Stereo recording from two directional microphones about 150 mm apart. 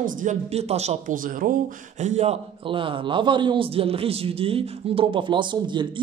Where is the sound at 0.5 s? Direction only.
45° right (ahead or behind).